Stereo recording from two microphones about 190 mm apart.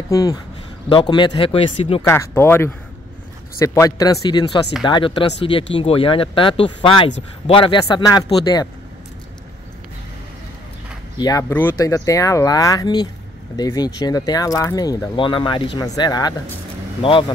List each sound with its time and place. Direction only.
0.1 s speech: 20° left (ahead or behind)
2.0 s speech: 15° left (ahead or behind)
11.1 s speech: 20° left (ahead or behind)